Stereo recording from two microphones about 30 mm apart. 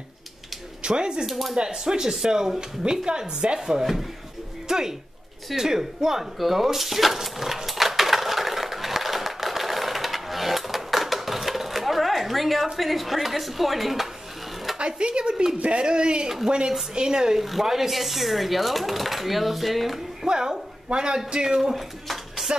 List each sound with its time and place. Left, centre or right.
0.8 s speech: right
1.2 s speech: centre
1.6 s speech: right
3.1 s speech: right
3.5 s speech: centre
6.3 s a sound: centre
12.7 s speech: centre
14.8 s speech: right
17.4 s speech: centre
20.2 s speech: right
22.0 s dishes: centre